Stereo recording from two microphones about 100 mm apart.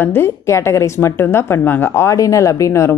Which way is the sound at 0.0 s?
25° left (ahead or behind).